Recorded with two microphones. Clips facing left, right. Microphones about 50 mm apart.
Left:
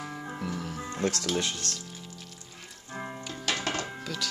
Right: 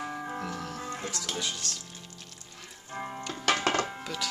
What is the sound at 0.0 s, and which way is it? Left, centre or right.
Music, centre.